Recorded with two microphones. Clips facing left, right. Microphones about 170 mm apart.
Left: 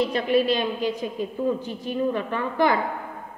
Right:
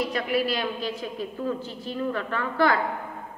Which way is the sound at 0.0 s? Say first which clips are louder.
Left 4 dB; 25° left (ahead or behind).